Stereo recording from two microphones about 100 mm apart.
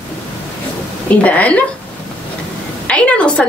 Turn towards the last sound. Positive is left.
turn(degrees=10)  # may be behind; listen again after turning